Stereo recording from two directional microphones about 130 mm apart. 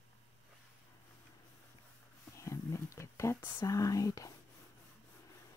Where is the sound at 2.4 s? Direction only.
25° left (ahead or behind).